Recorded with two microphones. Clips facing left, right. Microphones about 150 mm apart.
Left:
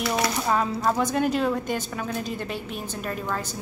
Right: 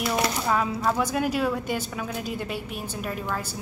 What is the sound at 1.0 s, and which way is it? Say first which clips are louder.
A woman's voice: left 2 dB; 10° right (ahead or behind).